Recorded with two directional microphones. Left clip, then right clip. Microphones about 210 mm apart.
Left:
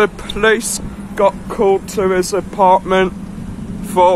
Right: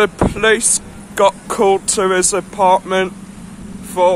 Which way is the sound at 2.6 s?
Centre (ahead or behind).